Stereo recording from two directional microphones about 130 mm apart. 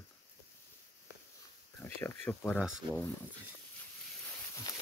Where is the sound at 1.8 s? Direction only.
15° left (ahead or behind).